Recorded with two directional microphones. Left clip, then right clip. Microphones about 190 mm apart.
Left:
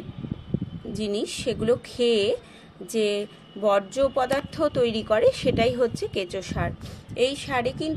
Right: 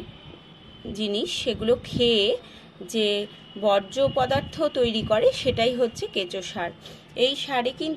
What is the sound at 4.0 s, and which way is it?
A woman's voice, 10° left (ahead or behind).